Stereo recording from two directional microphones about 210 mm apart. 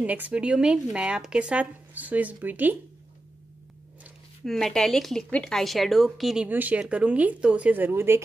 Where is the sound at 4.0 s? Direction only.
Centre (ahead or behind).